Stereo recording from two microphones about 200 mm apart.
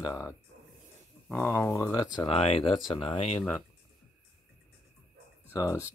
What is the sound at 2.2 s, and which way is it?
Speech, 30° left (ahead or behind).